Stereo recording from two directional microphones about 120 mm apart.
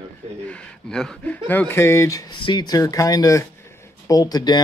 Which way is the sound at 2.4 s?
40° left (ahead or behind).